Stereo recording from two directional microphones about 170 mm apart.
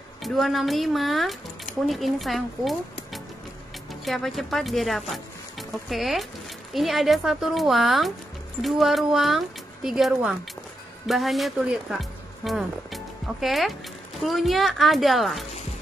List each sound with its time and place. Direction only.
0.2 s speech: centre (ahead or behind)